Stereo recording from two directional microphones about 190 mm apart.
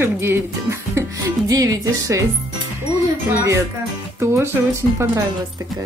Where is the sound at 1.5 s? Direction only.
20° right (ahead or behind).